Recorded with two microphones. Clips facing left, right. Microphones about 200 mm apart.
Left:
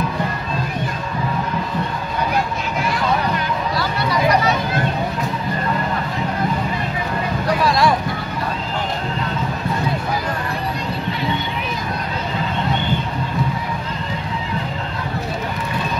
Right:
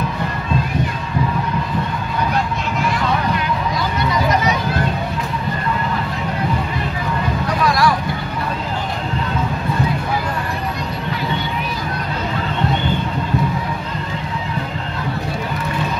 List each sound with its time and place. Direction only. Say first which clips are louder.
7.6 s vehicle: right 1 dB; 25° left (ahead or behind)